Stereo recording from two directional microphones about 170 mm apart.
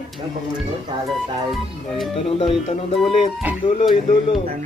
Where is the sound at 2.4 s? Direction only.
35° left (ahead or behind).